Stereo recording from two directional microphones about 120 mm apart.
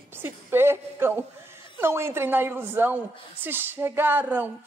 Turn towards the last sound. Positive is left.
turn(degrees=-15)  # may be behind; listen again after turning